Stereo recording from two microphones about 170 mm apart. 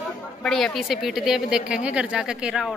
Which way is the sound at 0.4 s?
5° left (ahead or behind).